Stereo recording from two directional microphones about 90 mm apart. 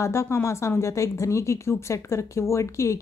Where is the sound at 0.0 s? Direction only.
35° left (ahead or behind).